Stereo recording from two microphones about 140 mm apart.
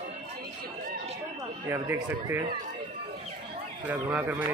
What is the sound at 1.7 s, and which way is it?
Speech, 15° right (ahead or behind).